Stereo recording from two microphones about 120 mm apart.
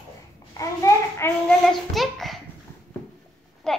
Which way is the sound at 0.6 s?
25° left (ahead or behind).